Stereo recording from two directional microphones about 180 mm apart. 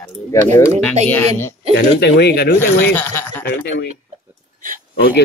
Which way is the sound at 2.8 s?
10° left (ahead or behind).